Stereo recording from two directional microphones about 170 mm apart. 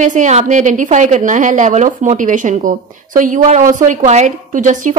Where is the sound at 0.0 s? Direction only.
45° right (ahead or behind).